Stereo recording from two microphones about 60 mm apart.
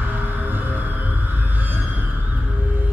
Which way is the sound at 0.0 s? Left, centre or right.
Right.